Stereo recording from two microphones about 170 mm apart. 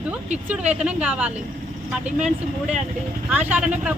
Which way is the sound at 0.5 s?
5° right (ahead or behind).